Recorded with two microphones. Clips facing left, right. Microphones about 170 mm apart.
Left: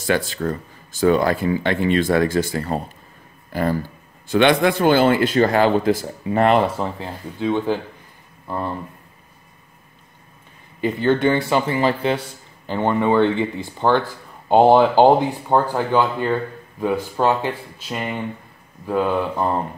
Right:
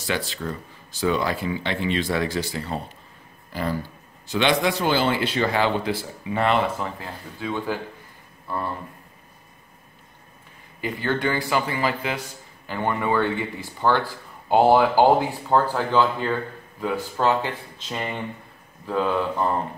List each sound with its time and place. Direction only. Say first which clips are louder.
0.0 s speech: left 7 dB; 50° left (ahead or behind)
7.0 s speech: left 7 dB; 20° left (ahead or behind)
10.8 s speech: left 7 dB; 20° left (ahead or behind)